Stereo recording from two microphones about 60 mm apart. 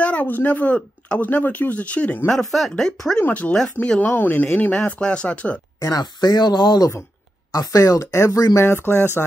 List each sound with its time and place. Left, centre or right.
0.0 s speech: left
0.7 s speech: centre
1.2 s speech: left
2.2 s speech: centre
3.2 s speech: left
5.0 s speech: centre
5.8 s speech: left
7.5 s speech: left
8.5 s speech: left